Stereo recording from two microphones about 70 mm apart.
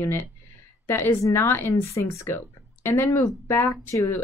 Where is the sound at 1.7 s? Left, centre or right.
Left.